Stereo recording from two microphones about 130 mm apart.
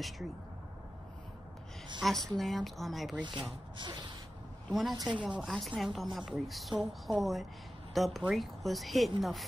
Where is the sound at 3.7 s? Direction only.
35° right (ahead or behind).